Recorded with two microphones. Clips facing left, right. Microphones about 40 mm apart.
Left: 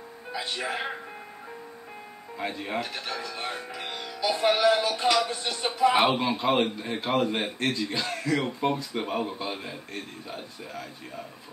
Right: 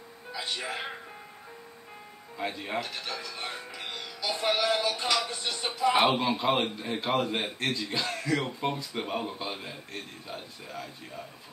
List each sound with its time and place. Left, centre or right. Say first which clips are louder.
0.7 s speech: left 4 dB; left
2.3 s a man's voice: left 1 dB; centre
2.8 s music: left 3 dB; centre
5.9 s a man's voice: left 1 dB; centre